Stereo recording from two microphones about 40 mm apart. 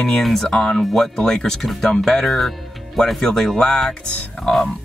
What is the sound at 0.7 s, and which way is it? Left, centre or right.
Speech, centre.